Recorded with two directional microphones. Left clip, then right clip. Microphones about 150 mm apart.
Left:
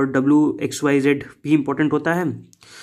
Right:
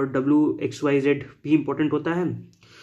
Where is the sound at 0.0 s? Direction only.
30° left (ahead or behind).